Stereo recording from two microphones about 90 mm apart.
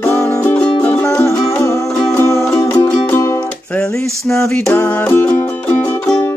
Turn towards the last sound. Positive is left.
turn(degrees=25)  # may be behind; listen again after turning